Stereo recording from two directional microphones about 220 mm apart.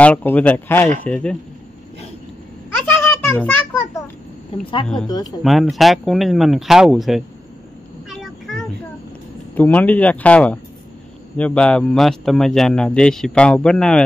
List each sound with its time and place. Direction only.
0.0 s a man's voice: 5° left (ahead or behind)
2.7 s a sound: 5° left (ahead or behind)
4.5 s speech: 25° left (ahead or behind)
5.4 s a man's voice: centre (ahead or behind)
8.1 s a sound: centre (ahead or behind)
9.6 s a man's voice: 5° left (ahead or behind)